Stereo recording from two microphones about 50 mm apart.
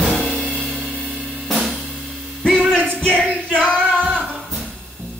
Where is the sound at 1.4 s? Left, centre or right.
Centre.